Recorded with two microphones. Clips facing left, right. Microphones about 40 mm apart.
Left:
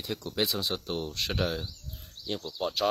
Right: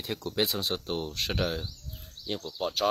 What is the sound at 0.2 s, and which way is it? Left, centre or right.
Speech, centre.